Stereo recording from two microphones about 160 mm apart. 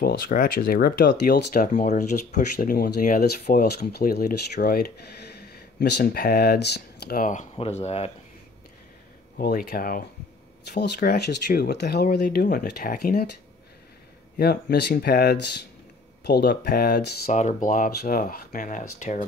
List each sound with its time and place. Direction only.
0.0 s speech: 65° left (ahead or behind)
7.5 s speech: 40° left (ahead or behind)
9.4 s speech: 70° left (ahead or behind)
10.7 s speech: 80° left
14.4 s speech: 80° left
16.3 s speech: 75° left (ahead or behind)
17.3 s speech: 50° left (ahead or behind)